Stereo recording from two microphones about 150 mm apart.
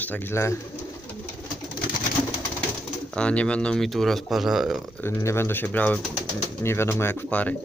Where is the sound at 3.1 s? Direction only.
5° left (ahead or behind).